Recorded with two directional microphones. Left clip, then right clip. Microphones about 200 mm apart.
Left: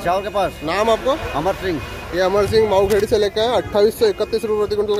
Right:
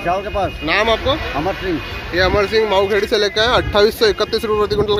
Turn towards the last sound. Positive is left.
turn(degrees=0)  # may be behind; listen again after turning